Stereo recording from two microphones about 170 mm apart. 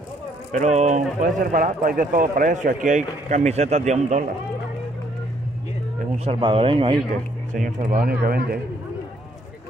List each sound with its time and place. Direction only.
0.5 s speech: 45° right (ahead or behind)
6.1 s speech: 35° right (ahead or behind)
7.5 s a man's voice: 55° right (ahead or behind)